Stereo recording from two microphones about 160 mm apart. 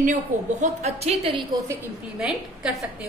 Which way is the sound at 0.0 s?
50° right (ahead or behind).